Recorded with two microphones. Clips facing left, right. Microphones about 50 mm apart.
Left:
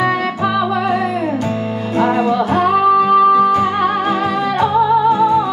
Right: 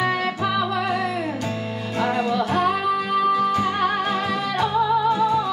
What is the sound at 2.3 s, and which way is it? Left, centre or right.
Music, left.